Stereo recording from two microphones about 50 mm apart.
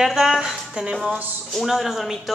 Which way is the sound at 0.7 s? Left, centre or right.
Centre.